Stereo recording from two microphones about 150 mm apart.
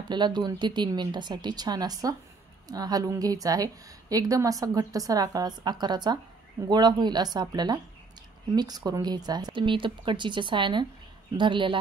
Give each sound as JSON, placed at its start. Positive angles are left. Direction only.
{"t": 0.1, "sound": "a woman's voice", "side_deg": -30}